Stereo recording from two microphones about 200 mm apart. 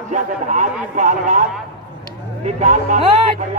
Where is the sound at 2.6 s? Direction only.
35° right (ahead or behind).